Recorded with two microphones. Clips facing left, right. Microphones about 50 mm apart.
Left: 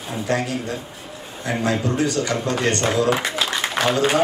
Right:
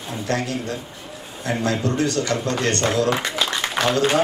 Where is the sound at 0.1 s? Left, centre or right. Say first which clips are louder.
Left 2 dB; centre.